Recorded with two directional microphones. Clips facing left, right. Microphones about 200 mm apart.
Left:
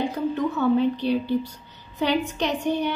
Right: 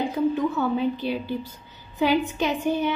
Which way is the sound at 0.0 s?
Centre (ahead or behind).